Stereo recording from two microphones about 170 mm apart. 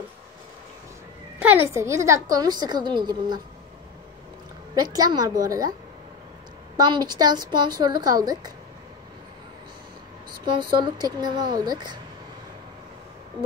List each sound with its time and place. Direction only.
1.4 s a woman's voice: 10° right (ahead or behind)
4.8 s a woman's voice: 25° right (ahead or behind)
6.8 s a woman's voice: 25° right (ahead or behind)
10.4 s a woman's voice: 30° right (ahead or behind)